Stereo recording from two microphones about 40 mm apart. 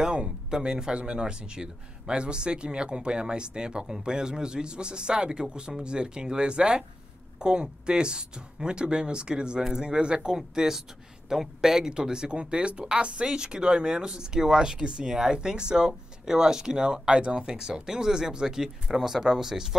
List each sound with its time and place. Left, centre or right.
0.0 s speech: right